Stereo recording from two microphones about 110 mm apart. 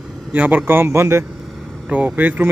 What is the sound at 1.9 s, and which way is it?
Speech, 15° right (ahead or behind).